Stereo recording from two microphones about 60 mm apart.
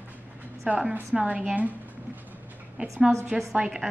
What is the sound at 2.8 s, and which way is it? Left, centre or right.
A woman's voice, centre.